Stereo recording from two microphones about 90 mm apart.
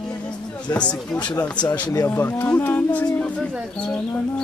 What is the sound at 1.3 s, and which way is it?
Speech, 45° left (ahead or behind).